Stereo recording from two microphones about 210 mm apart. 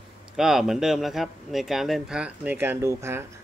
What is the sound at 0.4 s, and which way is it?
Speech, centre (ahead or behind).